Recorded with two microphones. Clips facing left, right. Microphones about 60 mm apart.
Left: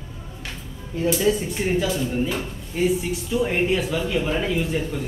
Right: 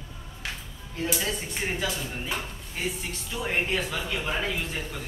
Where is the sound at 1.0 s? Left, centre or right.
Centre.